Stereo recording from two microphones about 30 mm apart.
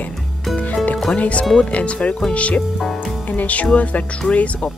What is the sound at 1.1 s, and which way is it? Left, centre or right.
Speech, left.